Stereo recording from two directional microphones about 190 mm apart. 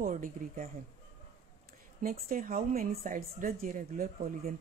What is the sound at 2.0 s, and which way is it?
A woman's voice, 45° right (ahead or behind).